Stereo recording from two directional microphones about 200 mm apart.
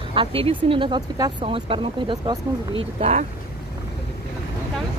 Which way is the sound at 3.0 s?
30° right (ahead or behind).